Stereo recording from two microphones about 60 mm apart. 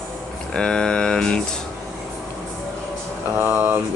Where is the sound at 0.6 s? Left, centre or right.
Centre.